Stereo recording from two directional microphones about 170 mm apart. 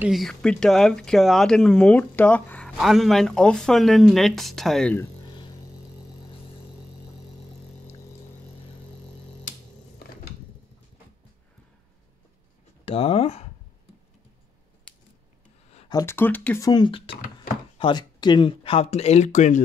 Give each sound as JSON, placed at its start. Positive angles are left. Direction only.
{"t": 0.0, "sound": "speech", "side_deg": 0}
{"t": 12.8, "sound": "speech", "side_deg": 35}
{"t": 15.9, "sound": "speech", "side_deg": 15}
{"t": 16.6, "sound": "speech", "side_deg": 25}